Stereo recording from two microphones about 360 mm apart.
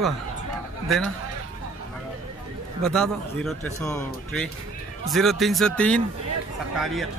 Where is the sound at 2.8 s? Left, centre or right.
Centre.